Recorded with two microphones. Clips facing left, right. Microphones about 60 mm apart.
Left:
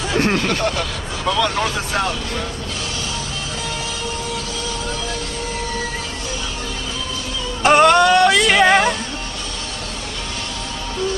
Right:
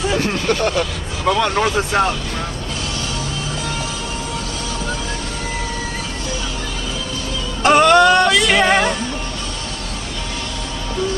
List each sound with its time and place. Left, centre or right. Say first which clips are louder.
1.2 s speech: right 3 dB; right
7.6 s music: right 1 dB; centre